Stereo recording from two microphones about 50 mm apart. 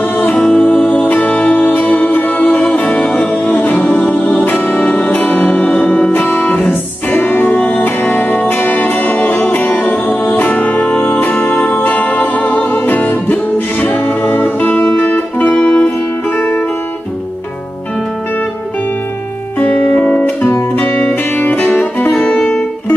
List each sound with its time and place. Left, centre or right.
0.0 s music: left
16.3 s music: left
20.7 s music: left
22.3 s music: centre